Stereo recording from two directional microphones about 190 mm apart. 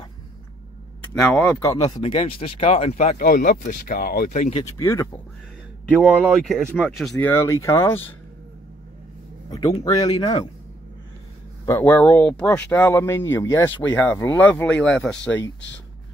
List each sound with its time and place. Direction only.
1.1 s speech: centre (ahead or behind)
1.7 s speech: 20° left (ahead or behind); by 4.6 s 40° left (ahead or behind)
4.6 s speech: 15° left (ahead or behind)
6.4 s speech: centre (ahead or behind)
7.2 s speech: 10° left (ahead or behind)
9.5 s speech: 20° left (ahead or behind)
11.6 s speech: 10° left (ahead or behind)